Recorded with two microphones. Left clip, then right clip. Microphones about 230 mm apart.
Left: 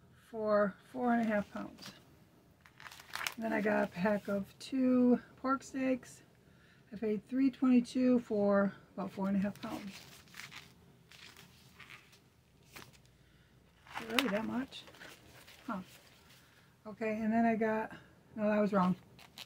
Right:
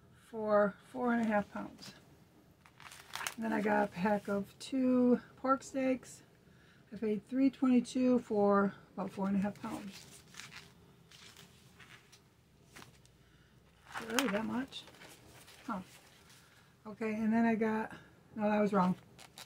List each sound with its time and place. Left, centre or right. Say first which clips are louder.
0.3 s speech: right 1 dB; centre
3.3 s speech: right 1 dB; centre
14.0 s speech: left 1 dB; centre